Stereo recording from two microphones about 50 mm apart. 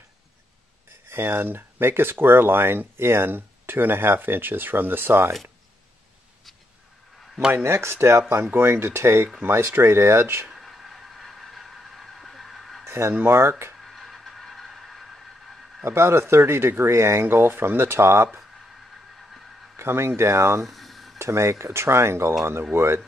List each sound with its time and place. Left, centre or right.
1.0 s speech: right
7.5 s speech: right
8.5 s speech: right
10.5 s a sound: centre
12.2 s vehicle: centre
12.8 s speech: right
13.9 s a sound: centre
15.8 s speech: right
19.8 s speech: right
20.6 s a sound: centre
21.2 s speech: right